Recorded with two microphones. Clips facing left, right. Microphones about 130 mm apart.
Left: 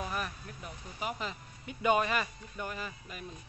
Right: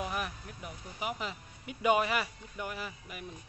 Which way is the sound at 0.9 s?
10° right (ahead or behind).